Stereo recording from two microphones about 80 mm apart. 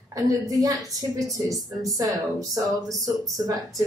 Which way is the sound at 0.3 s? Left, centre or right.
Right.